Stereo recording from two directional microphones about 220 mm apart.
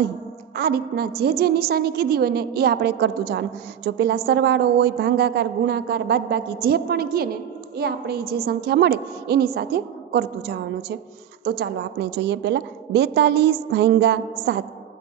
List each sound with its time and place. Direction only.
0.6 s a woman's voice: 45° right (ahead or behind)